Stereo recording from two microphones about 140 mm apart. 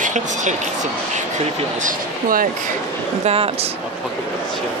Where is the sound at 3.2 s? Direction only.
45° right (ahead or behind).